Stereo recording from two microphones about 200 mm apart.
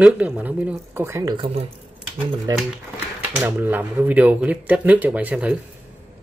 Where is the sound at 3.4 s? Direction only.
10° right (ahead or behind).